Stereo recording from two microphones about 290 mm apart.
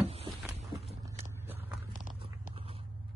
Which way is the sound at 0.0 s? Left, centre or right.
Centre.